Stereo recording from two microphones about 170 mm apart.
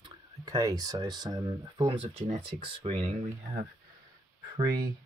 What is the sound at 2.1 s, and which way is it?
Speech, 40° right (ahead or behind).